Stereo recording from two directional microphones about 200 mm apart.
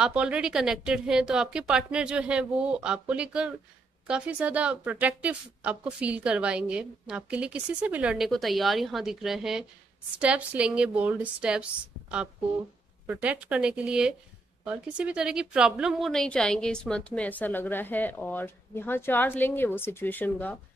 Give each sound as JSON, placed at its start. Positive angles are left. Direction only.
{"t": 0.0, "sound": "a woman's voice", "side_deg": -5}
{"t": 13.0, "sound": "a woman's voice", "side_deg": -5}